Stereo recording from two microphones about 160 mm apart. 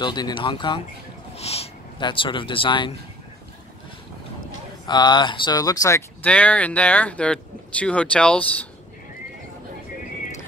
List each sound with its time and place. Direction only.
0.0 s speech: 25° left (ahead or behind)
4.8 s speech: 25° left (ahead or behind)
6.2 s speech: 10° left (ahead or behind)